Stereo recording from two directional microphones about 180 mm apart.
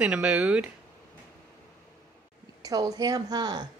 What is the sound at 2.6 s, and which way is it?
Speech, 20° right (ahead or behind).